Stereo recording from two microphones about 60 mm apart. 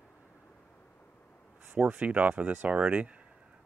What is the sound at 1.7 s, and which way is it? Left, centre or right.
Speech, right.